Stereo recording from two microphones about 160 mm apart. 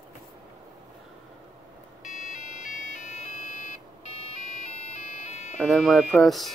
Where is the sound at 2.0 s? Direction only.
50° left (ahead or behind).